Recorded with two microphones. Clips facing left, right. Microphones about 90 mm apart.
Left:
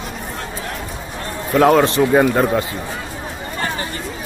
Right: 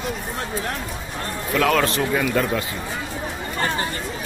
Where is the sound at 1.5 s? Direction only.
30° left (ahead or behind).